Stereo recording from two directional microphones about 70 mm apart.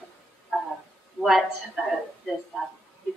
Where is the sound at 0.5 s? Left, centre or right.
Centre.